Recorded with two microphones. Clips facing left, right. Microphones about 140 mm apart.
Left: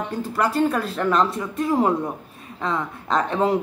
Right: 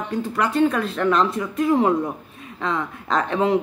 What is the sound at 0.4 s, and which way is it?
Speech, 5° left (ahead or behind).